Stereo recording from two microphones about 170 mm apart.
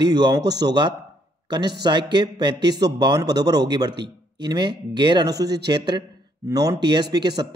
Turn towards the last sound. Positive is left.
turn(degrees=-25)  # may be behind; listen again after turning